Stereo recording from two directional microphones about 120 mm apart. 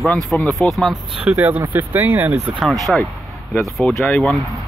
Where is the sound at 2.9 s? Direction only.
Centre (ahead or behind).